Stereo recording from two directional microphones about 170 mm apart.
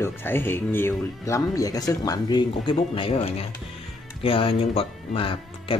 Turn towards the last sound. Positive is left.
turn(degrees=30)  # may be behind; listen again after turning